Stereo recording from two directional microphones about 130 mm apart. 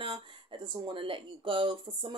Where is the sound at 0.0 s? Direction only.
40° right (ahead or behind).